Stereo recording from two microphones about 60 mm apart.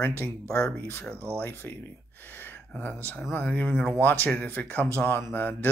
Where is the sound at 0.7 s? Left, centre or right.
Left.